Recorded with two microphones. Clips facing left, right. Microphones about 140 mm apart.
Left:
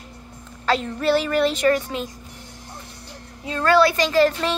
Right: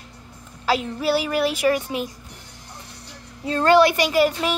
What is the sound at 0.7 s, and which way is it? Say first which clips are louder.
A woman's voice: left 1 dB; 5° right (ahead or behind).